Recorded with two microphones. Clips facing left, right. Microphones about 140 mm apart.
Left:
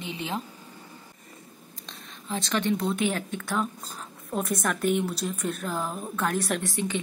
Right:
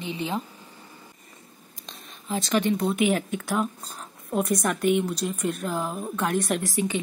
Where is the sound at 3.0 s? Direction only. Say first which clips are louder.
Right 4 dB; 20° right (ahead or behind).